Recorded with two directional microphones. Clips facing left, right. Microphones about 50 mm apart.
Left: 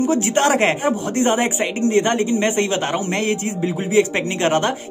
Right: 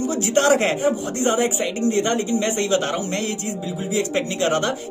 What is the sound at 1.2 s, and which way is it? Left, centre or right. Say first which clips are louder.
A man's voice: left 1 dB; left.